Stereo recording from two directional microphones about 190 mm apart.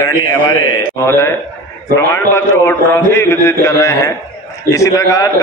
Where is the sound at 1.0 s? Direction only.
15° left (ahead or behind).